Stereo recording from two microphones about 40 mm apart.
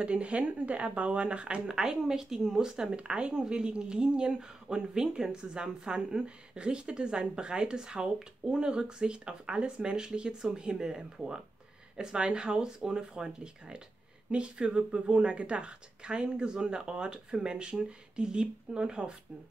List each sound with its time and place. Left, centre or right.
0.0 s speech: right
1.7 s a woman's voice: centre